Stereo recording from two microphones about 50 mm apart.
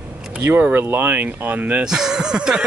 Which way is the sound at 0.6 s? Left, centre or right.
Right.